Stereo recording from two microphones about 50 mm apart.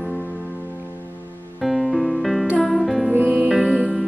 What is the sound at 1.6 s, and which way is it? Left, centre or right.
Music, centre.